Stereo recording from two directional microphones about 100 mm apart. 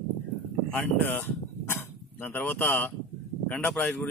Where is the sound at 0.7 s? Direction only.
20° left (ahead or behind).